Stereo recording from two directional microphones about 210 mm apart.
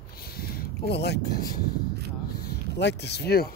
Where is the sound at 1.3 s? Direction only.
45° left (ahead or behind).